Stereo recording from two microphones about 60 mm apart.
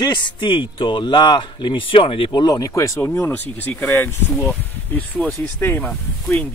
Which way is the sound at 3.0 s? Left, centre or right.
Left.